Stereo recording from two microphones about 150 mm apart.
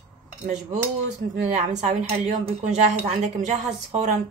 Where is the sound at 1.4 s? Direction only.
50° right (ahead or behind).